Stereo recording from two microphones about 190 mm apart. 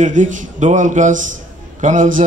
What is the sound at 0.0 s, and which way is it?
Speech, 40° right (ahead or behind).